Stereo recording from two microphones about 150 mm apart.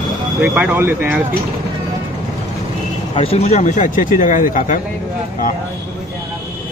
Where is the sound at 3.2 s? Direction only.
45° left (ahead or behind); by 4.7 s 60° left (ahead or behind).